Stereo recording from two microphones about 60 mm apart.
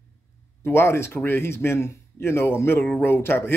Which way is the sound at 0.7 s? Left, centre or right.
Left.